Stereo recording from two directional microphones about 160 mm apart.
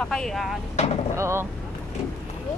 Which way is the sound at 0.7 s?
40° left (ahead or behind).